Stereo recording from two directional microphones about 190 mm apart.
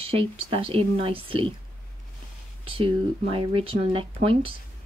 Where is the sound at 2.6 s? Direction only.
30° right (ahead or behind).